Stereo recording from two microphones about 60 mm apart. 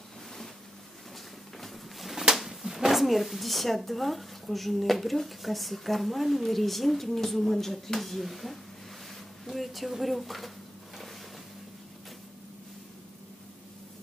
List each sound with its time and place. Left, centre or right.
1.6 s speech: centre